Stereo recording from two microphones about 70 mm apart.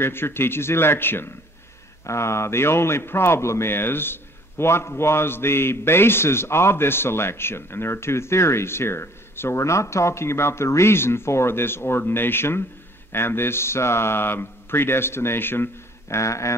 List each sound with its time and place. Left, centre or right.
0.0 s speech: left